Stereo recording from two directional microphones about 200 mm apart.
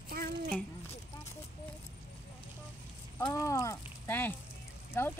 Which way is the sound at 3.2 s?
15° left (ahead or behind).